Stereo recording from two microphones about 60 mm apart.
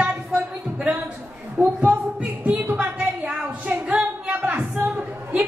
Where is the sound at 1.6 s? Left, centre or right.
Right.